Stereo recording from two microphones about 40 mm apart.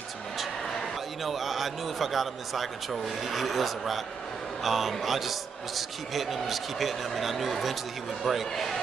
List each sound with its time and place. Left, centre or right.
1.2 s a man's voice: centre